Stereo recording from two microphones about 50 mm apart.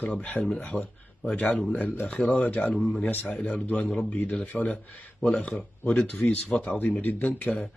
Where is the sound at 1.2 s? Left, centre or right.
Left.